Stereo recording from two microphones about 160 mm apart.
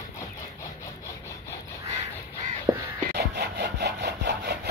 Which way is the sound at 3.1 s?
90° right.